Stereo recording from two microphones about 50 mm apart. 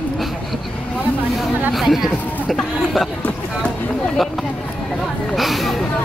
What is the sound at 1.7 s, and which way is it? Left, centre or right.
Speech, centre.